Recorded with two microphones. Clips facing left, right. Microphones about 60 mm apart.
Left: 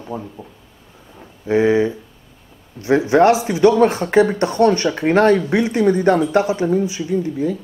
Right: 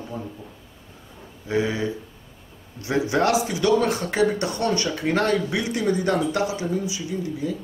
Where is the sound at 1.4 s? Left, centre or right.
Left.